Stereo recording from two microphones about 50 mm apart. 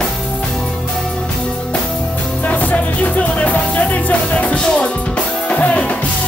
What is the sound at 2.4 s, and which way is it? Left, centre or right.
Music, left.